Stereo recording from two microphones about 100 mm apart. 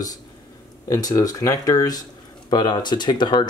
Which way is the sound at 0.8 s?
35° left (ahead or behind).